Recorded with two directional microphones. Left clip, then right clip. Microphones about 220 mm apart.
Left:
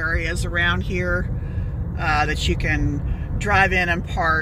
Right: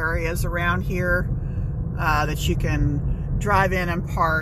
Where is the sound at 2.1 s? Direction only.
15° right (ahead or behind).